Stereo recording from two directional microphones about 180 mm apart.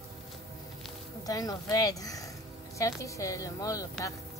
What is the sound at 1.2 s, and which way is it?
A woman's voice, 20° left (ahead or behind).